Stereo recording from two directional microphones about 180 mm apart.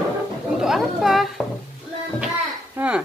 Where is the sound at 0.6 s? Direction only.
Centre (ahead or behind).